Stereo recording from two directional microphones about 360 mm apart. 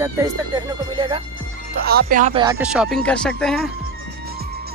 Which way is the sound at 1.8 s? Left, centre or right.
Right.